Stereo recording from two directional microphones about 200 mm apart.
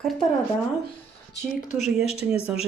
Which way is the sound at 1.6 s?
35° left (ahead or behind).